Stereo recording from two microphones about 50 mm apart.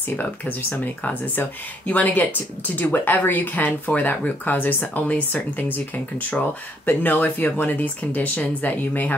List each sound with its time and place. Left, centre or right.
0.1 s speech: left
6.9 s speech: left